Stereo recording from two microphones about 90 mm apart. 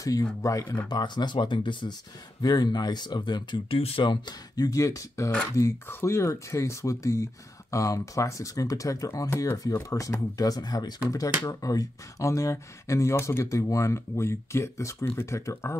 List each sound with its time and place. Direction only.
0.0 s speech: 40° left (ahead or behind)
0.8 s speech: 55° left (ahead or behind)
2.4 s speech: 50° left (ahead or behind)
3.7 s speech: 75° left (ahead or behind); by 15.7 s 30° left (ahead or behind)